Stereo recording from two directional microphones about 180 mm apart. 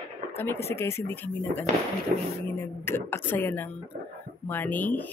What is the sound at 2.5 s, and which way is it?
Speech, 10° left (ahead or behind).